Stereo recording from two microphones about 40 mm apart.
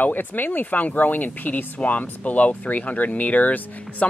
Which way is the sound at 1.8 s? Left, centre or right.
Left.